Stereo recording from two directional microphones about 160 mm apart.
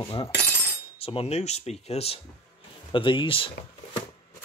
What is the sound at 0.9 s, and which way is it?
Speech, 35° left (ahead or behind).